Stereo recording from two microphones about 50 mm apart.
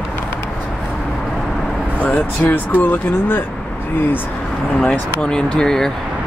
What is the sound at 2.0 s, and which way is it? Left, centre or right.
Speech, left.